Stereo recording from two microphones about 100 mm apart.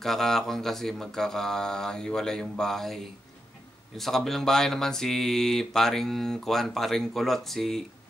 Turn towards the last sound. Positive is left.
turn(degrees=5)  # may be behind; listen again after turning